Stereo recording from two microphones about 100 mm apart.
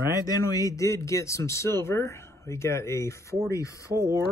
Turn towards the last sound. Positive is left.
turn(degrees=-30)  # may be behind; listen again after turning